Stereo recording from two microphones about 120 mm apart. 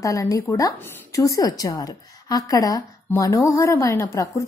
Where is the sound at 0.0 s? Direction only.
30° left (ahead or behind).